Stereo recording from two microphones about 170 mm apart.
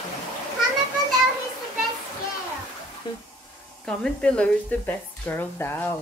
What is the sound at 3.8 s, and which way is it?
A woman's voice, 5° left (ahead or behind).